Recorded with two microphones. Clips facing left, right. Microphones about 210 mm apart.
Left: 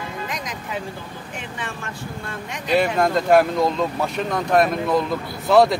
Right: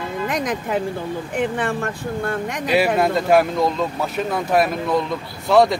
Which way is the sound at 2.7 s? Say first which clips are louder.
Right 1 dB; 5° right (ahead or behind).